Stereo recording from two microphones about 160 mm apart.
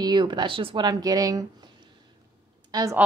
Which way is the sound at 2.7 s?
25° right (ahead or behind).